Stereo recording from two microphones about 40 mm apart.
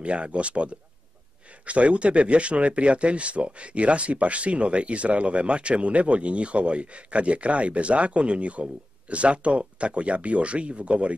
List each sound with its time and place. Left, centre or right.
0.0 s speech: right